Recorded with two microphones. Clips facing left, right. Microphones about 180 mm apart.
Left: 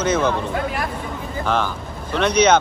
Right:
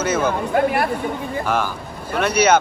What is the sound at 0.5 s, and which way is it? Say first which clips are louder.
Speech: right 6 dB; 60° right (ahead or behind).